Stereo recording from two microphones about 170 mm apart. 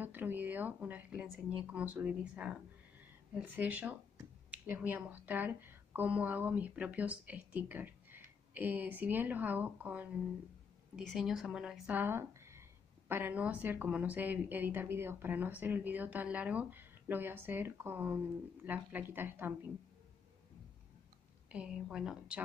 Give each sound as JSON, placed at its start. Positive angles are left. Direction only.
{"t": 0.0, "sound": "a woman's voice", "side_deg": -10}
{"t": 21.5, "sound": "speech", "side_deg": -5}